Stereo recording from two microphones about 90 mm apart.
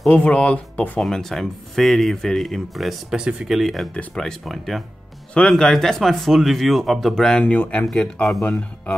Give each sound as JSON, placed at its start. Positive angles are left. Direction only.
{"t": 0.1, "sound": "speech", "side_deg": 15}
{"t": 1.0, "sound": "speech", "side_deg": 0}
{"t": 8.4, "sound": "speech", "side_deg": 20}